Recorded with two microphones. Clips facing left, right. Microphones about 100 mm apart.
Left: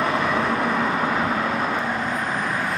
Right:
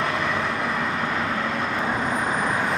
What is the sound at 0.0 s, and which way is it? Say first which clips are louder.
Vehicle: left 3 dB; 5° left (ahead or behind).